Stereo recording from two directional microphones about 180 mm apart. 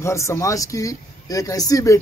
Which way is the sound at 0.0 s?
15° left (ahead or behind).